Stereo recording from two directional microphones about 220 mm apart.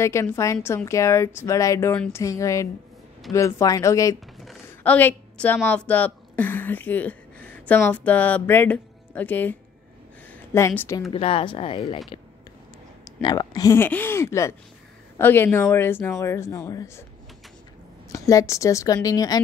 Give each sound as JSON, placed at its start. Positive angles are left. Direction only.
{"t": 0.0, "sound": "a woman's voice", "side_deg": 10}
{"t": 11.1, "sound": "speech", "side_deg": 25}
{"t": 13.2, "sound": "a woman's voice", "side_deg": 20}
{"t": 18.1, "sound": "a woman's voice", "side_deg": 15}